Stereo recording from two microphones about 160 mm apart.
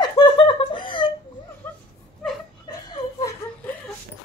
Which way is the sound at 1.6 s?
15° left (ahead or behind).